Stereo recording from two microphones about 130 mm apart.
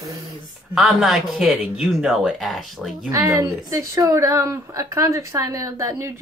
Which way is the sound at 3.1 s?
25° right (ahead or behind).